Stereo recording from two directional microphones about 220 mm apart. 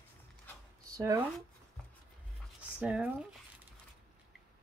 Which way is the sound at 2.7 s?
5° right (ahead or behind).